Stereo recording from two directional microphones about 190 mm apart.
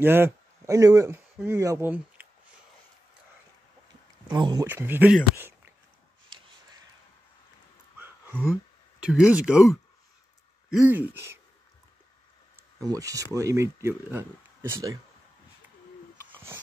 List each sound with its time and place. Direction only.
0.0 s speech: 10° right (ahead or behind)
4.3 s speech: 20° right (ahead or behind)
4.6 s speech: 10° right (ahead or behind)
9.0 s speech: 5° right (ahead or behind)
12.8 s speech: 20° right (ahead or behind)
16.3 s a sound: 10° right (ahead or behind)